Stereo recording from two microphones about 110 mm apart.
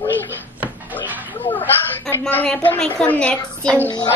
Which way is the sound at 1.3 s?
15° left (ahead or behind).